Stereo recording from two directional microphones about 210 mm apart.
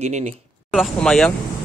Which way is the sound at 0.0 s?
30° right (ahead or behind).